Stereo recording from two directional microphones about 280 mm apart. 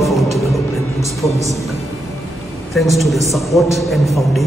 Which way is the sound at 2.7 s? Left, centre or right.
Centre.